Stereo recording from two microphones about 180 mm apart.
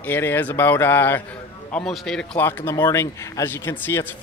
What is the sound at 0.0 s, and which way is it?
Speech, 10° left (ahead or behind).